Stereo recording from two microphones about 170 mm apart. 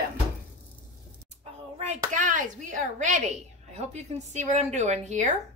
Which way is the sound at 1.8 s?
50° right (ahead or behind).